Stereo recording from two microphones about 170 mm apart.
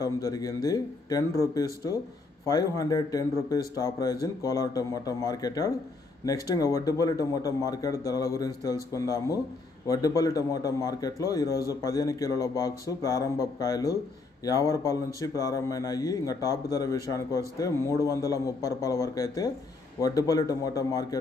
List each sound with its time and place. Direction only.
0.0 s a man's voice: 20° left (ahead or behind)